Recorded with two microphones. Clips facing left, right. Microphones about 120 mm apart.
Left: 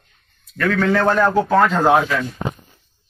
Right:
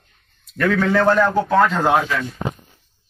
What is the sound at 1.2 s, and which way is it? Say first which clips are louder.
Speech: left 1 dB; centre (ahead or behind).